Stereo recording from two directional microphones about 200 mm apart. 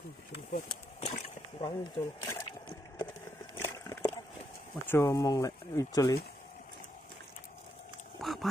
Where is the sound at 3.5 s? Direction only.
10° left (ahead or behind).